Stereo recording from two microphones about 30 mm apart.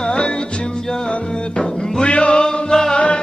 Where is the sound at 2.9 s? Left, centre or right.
Left.